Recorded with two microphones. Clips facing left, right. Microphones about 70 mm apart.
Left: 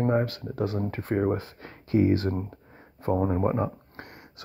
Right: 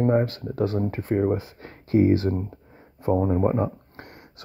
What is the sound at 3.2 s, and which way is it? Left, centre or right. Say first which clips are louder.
Speech: right 2 dB; centre.